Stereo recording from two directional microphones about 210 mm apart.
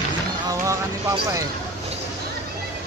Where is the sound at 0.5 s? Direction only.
15° right (ahead or behind).